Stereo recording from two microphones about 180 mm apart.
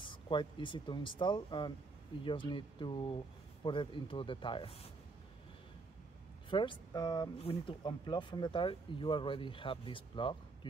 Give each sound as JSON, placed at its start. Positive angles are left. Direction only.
{"t": 0.0, "sound": "speech", "side_deg": 25}
{"t": 6.5, "sound": "speech", "side_deg": 25}